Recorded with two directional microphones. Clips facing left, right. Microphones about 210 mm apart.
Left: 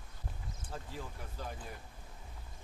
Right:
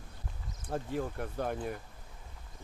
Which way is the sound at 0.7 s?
60° right (ahead or behind).